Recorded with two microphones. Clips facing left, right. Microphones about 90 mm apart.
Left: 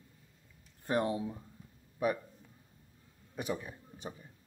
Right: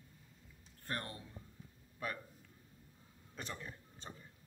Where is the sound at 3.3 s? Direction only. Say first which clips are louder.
Left 9 dB; 10° left (ahead or behind).